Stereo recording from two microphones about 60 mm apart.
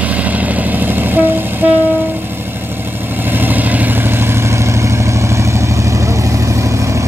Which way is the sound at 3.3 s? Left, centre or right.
Right.